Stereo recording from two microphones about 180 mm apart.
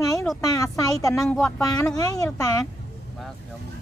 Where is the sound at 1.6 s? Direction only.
20° left (ahead or behind).